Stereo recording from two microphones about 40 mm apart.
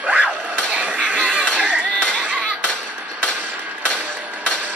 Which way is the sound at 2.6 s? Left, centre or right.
Left.